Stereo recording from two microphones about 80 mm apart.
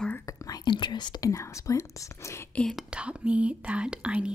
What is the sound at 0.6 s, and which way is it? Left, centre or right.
Speech, left.